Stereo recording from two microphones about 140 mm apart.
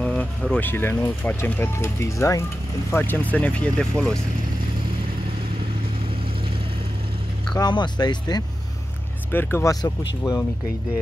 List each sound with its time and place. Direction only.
0.0 s vehicle: 10° left (ahead or behind)
0.6 s speech: 15° left (ahead or behind)
7.5 s speech: 30° left (ahead or behind)
9.3 s speech: 15° left (ahead or behind)